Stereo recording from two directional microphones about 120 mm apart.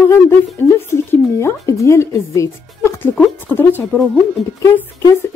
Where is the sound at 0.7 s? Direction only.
20° left (ahead or behind).